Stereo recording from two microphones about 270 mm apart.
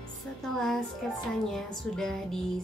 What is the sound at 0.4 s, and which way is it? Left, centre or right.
Music, centre.